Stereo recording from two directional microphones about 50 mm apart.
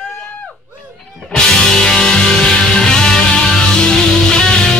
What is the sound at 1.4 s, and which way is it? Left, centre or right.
Music, centre.